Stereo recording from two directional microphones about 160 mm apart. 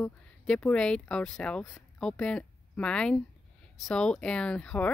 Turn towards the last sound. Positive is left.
turn(degrees=5)  # may be behind; listen again after turning